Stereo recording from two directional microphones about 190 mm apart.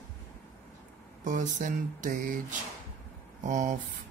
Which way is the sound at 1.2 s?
40° right (ahead or behind).